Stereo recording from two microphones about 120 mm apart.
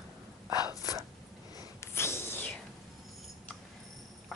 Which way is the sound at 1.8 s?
20° left (ahead or behind).